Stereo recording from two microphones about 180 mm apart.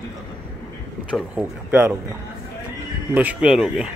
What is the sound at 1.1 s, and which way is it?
Speech, 10° right (ahead or behind).